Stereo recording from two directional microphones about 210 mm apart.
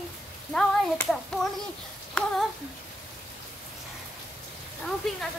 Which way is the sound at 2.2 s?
5° left (ahead or behind).